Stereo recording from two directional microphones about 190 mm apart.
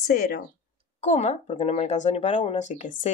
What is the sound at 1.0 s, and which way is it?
Speech, 35° left (ahead or behind).